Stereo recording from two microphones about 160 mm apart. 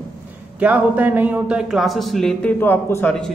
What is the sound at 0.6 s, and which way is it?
Speech, 10° right (ahead or behind).